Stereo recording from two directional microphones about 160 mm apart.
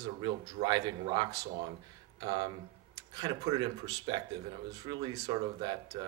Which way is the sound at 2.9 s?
25° right (ahead or behind).